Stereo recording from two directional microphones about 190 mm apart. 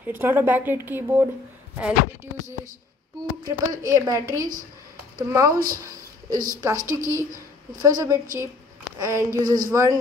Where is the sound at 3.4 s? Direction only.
20° right (ahead or behind).